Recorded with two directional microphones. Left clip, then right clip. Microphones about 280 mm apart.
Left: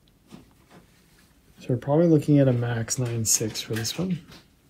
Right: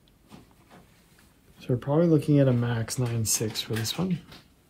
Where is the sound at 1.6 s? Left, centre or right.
Centre.